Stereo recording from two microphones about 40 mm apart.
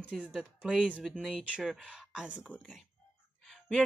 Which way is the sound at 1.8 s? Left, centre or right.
Right.